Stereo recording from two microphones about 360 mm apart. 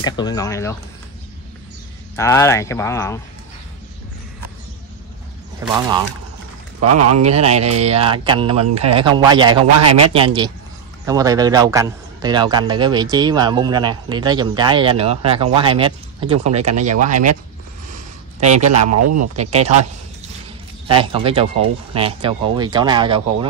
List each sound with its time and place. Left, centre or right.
0.0 s speech: centre
2.1 s speech: centre
5.8 s a man's voice: centre
6.8 s speech: right
7.2 s a man's voice: centre
9.8 s a man's voice: right
10.1 s a man's voice: centre
17.8 s a sound: centre
18.7 s speech: right
19.5 s a man's voice: centre
20.9 s a man's voice: centre